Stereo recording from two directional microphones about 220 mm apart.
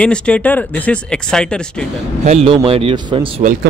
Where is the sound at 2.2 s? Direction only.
30° right (ahead or behind).